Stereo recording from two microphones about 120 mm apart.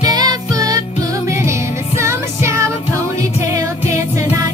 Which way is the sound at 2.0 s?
25° right (ahead or behind).